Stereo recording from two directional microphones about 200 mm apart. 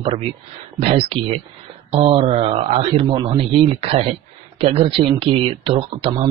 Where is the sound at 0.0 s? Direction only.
30° right (ahead or behind).